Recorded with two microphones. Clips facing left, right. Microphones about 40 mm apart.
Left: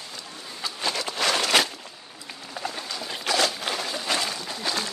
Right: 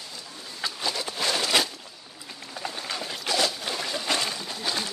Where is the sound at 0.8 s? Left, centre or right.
Left.